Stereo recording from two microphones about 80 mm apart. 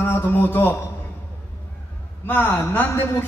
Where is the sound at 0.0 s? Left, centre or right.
Left.